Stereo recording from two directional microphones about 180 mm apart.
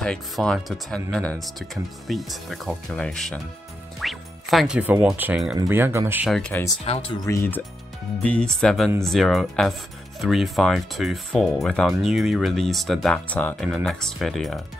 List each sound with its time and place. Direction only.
0.0 s speech: 5° left (ahead or behind)
6.3 s speech: 5° left (ahead or behind)
6.8 s speech: 30° left (ahead or behind)
8.2 s speech: 5° left (ahead or behind)